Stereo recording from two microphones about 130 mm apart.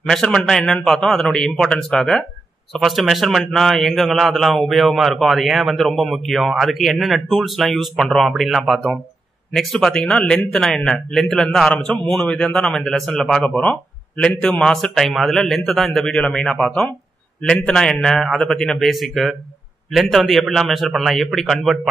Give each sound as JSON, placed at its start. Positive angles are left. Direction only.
{"t": 0.0, "sound": "a man's voice", "side_deg": 5}